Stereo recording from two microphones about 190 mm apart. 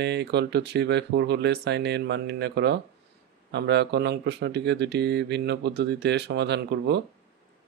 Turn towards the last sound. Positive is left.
turn(degrees=-60)  # may be behind; listen again after turning